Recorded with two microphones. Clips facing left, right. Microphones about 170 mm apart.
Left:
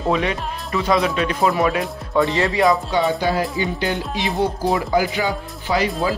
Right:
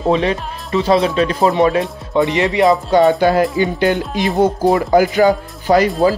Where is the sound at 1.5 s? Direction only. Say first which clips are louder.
Right 5 dB; 25° right (ahead or behind).